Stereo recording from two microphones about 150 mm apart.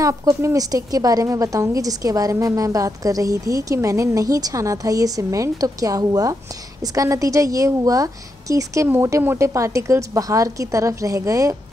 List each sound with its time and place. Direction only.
0.0 s a woman's voice: 20° right (ahead or behind)